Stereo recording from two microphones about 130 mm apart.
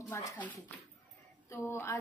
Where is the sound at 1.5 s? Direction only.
20° left (ahead or behind).